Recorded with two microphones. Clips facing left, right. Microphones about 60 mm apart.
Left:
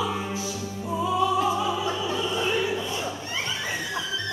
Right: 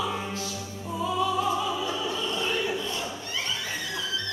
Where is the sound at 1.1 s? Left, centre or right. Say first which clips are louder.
Left 3 dB; centre.